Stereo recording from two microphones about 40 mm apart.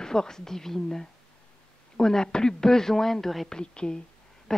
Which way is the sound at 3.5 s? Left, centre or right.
Left.